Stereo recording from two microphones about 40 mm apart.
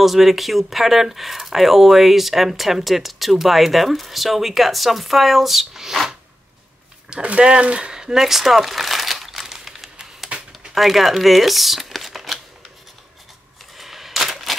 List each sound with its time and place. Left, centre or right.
0.0 s speech: centre
7.1 s speech: right
7.9 s speech: centre
9.5 s typewriter: centre
10.3 s a sound: right
10.7 s speech: centre
13.7 s a sound: centre